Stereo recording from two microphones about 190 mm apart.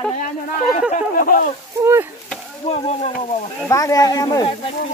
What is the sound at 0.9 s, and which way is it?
Speech, 45° left (ahead or behind).